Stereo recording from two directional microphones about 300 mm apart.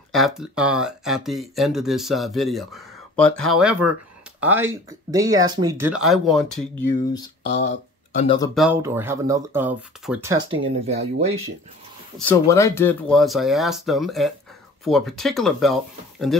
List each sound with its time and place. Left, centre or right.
0.1 s speech: centre
8.5 s speech: centre
12.3 s speech: centre